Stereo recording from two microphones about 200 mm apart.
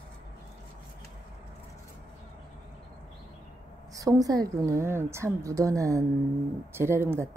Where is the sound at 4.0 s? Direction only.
15° right (ahead or behind).